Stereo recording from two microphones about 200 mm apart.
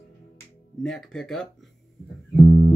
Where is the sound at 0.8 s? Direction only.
Centre (ahead or behind).